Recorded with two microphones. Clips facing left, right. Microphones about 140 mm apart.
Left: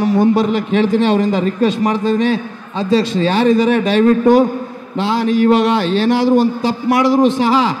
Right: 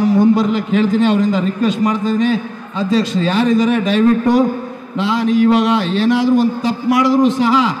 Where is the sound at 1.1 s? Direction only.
30° left (ahead or behind).